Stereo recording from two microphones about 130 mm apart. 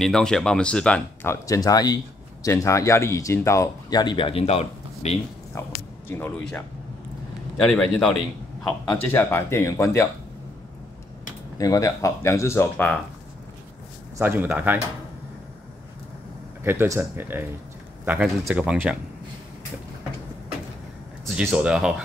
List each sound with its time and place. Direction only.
0.0 s speech: 5° left (ahead or behind)
1.3 s speech: 25° left (ahead or behind)
4.0 s speech: 40° left (ahead or behind); by 5.1 s 55° left (ahead or behind)
6.0 s speech: 15° left (ahead or behind)
7.6 s speech: 5° left (ahead or behind)
8.9 s speech: 15° left (ahead or behind)
11.5 s speech: 25° left (ahead or behind)
14.1 s speech: 15° right (ahead or behind)
16.6 s speech: 20° right (ahead or behind)
18.2 s speech: 5° right (ahead or behind)
21.3 s speech: 5° right (ahead or behind)